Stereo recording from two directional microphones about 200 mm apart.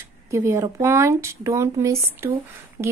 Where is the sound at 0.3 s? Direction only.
15° right (ahead or behind).